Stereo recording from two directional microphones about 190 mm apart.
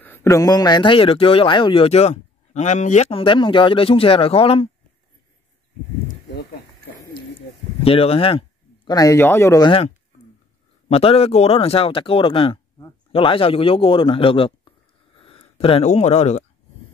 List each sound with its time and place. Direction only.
0.0 s speech: 15° left (ahead or behind); by 4.6 s 30° left (ahead or behind)
7.8 s speech: 30° left (ahead or behind)